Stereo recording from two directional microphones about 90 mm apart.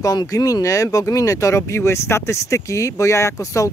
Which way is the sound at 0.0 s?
45° left (ahead or behind).